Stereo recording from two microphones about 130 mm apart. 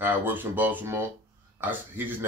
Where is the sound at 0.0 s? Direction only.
15° right (ahead or behind).